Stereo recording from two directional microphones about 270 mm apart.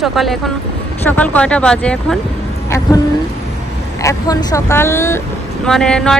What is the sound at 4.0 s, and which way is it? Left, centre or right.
Speech, centre.